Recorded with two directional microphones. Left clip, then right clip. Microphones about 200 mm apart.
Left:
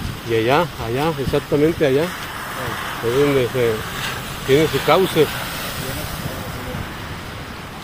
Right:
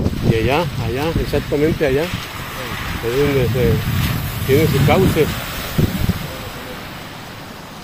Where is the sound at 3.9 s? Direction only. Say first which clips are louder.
Right 1 dB; 45° right (ahead or behind).